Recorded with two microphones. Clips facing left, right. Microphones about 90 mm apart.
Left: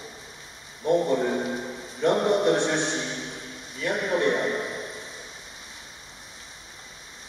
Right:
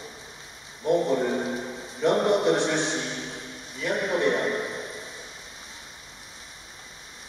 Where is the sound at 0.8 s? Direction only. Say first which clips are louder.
Even; centre (ahead or behind).